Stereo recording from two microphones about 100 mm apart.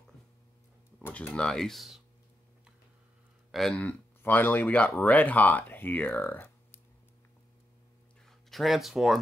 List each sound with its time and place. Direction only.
1.0 s speech: 15° left (ahead or behind); by 2.0 s centre (ahead or behind)
3.5 s speech: 5° left (ahead or behind)
3.8 s speech: 20° left (ahead or behind)
8.3 s speech: centre (ahead or behind)